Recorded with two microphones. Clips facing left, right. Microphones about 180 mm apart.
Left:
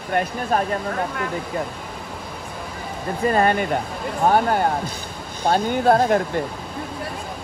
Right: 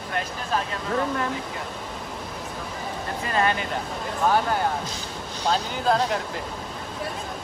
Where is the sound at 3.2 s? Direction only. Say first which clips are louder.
Left 7 dB; 50° left (ahead or behind).